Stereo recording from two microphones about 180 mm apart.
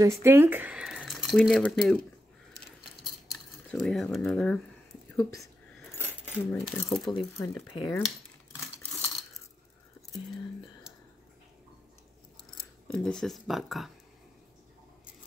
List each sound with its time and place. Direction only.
0.0 s speech: 15° right (ahead or behind); by 2.0 s 5° left (ahead or behind)
3.1 s keys jangling: centre (ahead or behind)
5.1 s speech: 20° left (ahead or behind)
5.9 s keys jangling: 10° right (ahead or behind)
6.7 s speech: centre (ahead or behind)
7.2 s speech: 15° left (ahead or behind)
12.8 s speech: 5° left (ahead or behind)